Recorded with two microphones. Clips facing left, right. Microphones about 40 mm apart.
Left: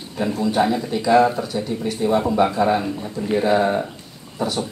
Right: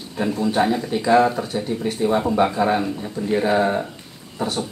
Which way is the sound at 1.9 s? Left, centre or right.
Centre.